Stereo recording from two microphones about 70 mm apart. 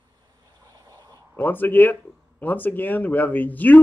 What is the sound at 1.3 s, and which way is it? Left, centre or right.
Speech, left.